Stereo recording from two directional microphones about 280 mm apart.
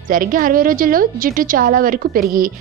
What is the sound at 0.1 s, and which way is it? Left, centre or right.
A woman's voice, right.